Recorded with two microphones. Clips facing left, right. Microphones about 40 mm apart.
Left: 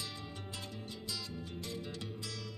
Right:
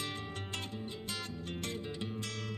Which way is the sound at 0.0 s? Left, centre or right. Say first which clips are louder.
Right 4 dB; right.